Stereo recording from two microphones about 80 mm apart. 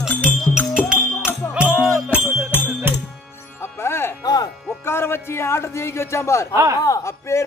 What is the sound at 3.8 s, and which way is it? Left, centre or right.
Music, left.